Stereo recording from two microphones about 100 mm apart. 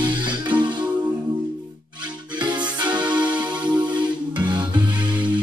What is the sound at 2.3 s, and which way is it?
Music, 50° right (ahead or behind).